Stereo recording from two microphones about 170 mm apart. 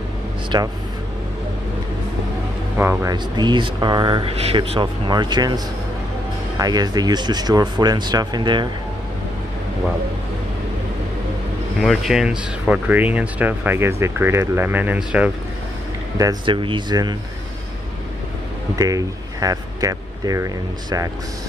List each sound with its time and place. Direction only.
0.5 s speech: 25° right (ahead or behind)
2.8 s speech: 15° right (ahead or behind)
6.6 s speech: 25° right (ahead or behind)
11.8 s speech: centre (ahead or behind)
16.2 s speech: 25° right (ahead or behind)
18.8 s speech: 20° right (ahead or behind)